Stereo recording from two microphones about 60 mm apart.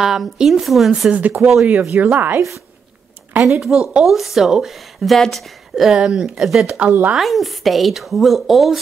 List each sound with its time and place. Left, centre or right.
0.0 s a woman's voice: centre
1.1 s speech: right
1.4 s a woman's voice: centre
2.0 s speech: right
3.4 s a woman's voice: centre